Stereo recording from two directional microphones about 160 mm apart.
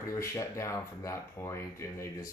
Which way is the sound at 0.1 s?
20° left (ahead or behind).